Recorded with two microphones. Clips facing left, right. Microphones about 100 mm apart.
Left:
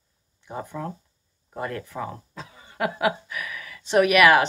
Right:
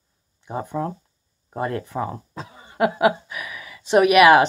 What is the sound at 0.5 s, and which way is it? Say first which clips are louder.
Speech: right 6 dB; 25° right (ahead or behind).